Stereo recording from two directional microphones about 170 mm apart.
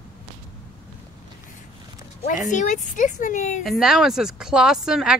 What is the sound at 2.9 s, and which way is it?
Speech, 50° left (ahead or behind).